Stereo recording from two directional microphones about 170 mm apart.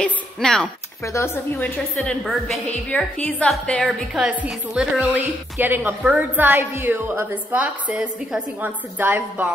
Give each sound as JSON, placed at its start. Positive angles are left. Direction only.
{"t": 0.0, "sound": "speech", "side_deg": 5}
{"t": 1.0, "sound": "speech", "side_deg": 15}
{"t": 2.0, "sound": "a woman's voice", "side_deg": 5}